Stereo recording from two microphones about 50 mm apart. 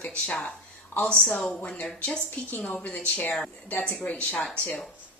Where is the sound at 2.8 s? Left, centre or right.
Left.